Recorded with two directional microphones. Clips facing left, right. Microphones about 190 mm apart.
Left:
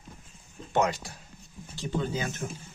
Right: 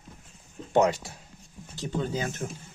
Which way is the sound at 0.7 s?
35° right (ahead or behind).